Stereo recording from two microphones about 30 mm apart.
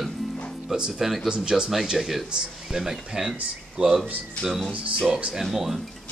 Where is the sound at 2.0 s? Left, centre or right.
Centre.